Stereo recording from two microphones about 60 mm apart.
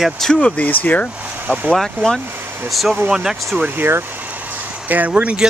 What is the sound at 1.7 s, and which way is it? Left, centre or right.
Speech, centre.